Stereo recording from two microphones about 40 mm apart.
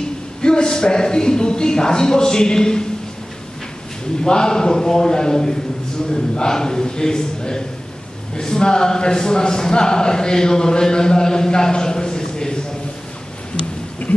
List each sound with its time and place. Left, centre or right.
0.4 s a man's voice: left
4.2 s a man's voice: centre